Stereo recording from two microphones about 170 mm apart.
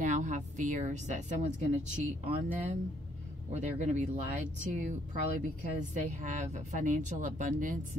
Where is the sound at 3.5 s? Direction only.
45° right (ahead or behind).